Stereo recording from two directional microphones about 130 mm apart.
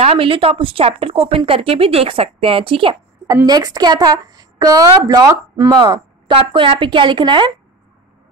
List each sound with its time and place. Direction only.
0.0 s speech: 45° right (ahead or behind)
3.4 s a woman's voice: 30° right (ahead or behind)